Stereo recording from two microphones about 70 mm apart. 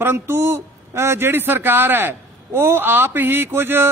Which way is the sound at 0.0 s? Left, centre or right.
Right.